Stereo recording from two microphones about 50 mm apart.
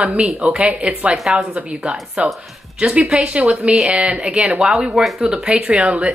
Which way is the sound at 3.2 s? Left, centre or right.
Right.